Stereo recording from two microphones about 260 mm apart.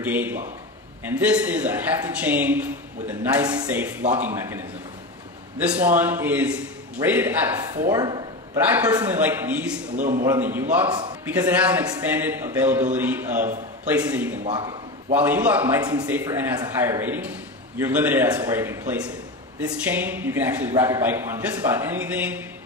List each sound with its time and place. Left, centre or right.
0.0 s a man's voice: centre
9.9 s a man's voice: right
10.2 s a man's voice: centre
10.9 s a man's voice: centre
11.2 s a man's voice: centre
14.4 s a sound: centre
15.1 s a man's voice: centre